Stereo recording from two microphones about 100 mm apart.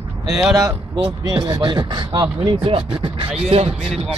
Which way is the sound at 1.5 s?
45° right (ahead or behind).